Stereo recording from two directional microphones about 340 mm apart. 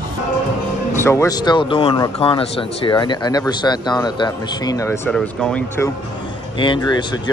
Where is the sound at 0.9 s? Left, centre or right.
Centre.